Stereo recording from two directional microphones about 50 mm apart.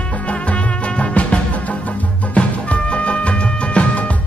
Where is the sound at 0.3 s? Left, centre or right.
Left.